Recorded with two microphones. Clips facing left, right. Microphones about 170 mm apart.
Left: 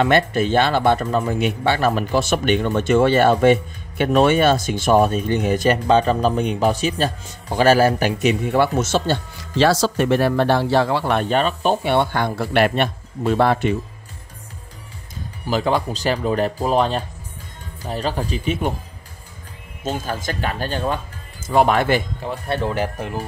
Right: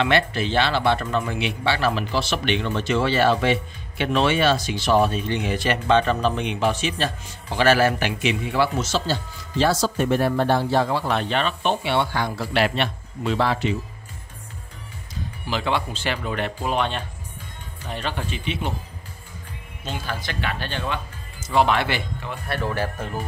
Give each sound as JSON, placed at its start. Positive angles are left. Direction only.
{"t": 0.0, "sound": "speech", "side_deg": 45}
{"t": 15.4, "sound": "speech", "side_deg": 40}
{"t": 19.8, "sound": "speech", "side_deg": 45}
{"t": 22.6, "sound": "speech", "side_deg": 20}